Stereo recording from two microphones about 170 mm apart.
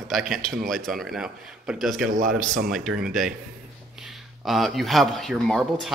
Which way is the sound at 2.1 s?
50° right (ahead or behind).